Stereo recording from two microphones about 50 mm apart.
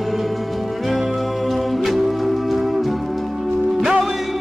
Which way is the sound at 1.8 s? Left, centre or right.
Centre.